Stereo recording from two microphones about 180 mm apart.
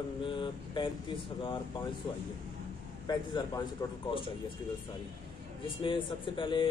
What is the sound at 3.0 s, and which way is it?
Speech, 25° left (ahead or behind).